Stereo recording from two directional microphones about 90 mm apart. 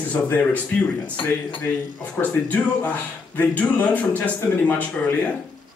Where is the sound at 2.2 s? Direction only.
15° left (ahead or behind).